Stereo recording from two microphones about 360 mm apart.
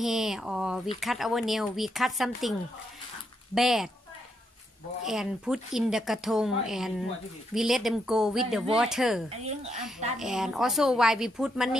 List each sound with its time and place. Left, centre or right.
0.0 s speech: centre
3.5 s speech: centre
5.0 s speech: centre
9.4 s speech: centre
10.1 s speech: centre